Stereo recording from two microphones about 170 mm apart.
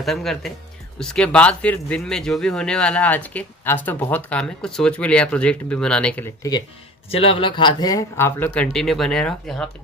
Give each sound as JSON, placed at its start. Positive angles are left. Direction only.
{"t": 0.0, "sound": "speech", "side_deg": 0}
{"t": 7.1, "sound": "speech", "side_deg": 35}
{"t": 8.7, "sound": "speech", "side_deg": 0}